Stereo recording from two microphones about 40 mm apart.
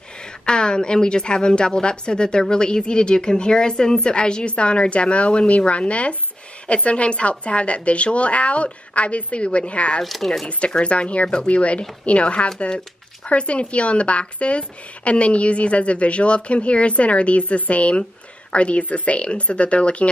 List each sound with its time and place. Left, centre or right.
0.2 s a woman's voice: left
10.0 s speech: centre
10.6 s a woman's voice: left